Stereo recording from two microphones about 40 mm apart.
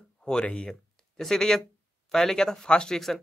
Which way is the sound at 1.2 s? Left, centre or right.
Centre.